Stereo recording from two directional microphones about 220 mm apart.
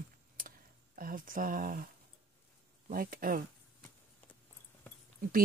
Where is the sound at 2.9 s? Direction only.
40° right (ahead or behind).